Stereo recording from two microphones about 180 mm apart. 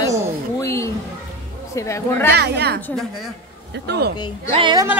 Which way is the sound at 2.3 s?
65° right (ahead or behind).